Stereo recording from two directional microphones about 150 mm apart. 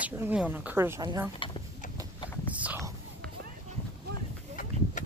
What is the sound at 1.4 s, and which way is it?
Speech, 35° left (ahead or behind).